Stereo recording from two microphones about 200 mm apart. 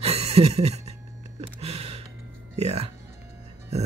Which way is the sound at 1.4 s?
30° right (ahead or behind).